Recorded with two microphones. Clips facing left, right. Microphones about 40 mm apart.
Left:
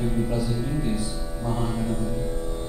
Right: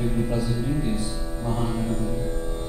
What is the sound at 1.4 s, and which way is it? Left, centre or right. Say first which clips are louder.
Speech: even; centre.